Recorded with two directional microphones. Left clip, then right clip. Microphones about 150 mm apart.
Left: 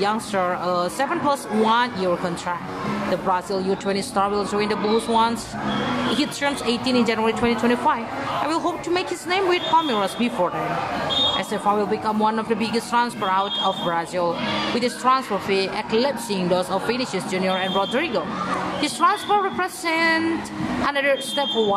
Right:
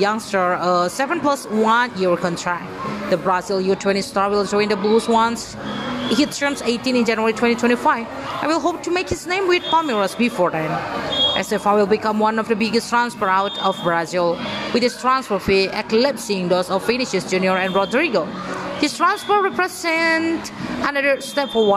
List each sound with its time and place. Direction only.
0.0 s speech: 35° right (ahead or behind)